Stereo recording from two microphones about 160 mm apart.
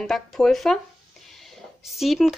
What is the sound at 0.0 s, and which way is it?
A woman's voice, centre (ahead or behind).